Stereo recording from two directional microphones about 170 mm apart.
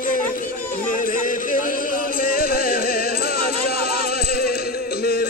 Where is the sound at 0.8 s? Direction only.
50° left (ahead or behind).